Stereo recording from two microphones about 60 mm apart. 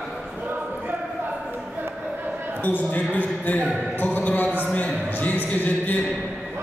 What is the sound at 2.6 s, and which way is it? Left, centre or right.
Speech, left.